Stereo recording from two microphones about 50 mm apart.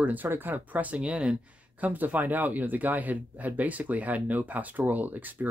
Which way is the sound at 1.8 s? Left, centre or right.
Right.